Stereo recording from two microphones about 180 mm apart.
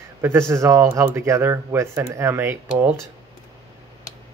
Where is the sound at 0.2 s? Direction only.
15° right (ahead or behind).